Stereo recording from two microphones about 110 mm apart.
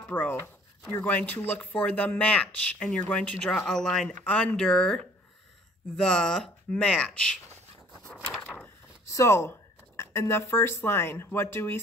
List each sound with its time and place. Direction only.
0.1 s speech: 15° left (ahead or behind)
9.0 s speech: 30° left (ahead or behind)